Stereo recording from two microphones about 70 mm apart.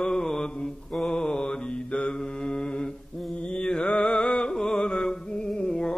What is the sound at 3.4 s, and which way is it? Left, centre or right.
Music, centre.